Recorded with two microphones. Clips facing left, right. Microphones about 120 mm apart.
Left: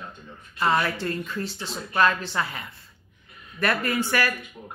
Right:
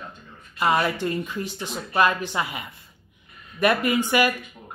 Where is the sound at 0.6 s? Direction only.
15° right (ahead or behind).